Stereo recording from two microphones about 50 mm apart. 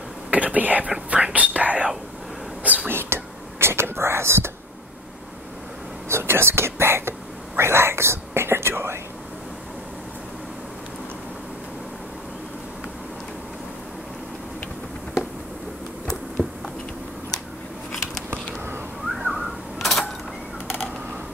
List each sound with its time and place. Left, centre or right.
0.3 s speech: right
1.1 s whispering: right
2.9 s whispering: right
6.0 s whispering: right
19.1 s a sound: centre